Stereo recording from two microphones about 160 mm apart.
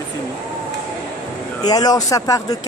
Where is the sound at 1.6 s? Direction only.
25° left (ahead or behind).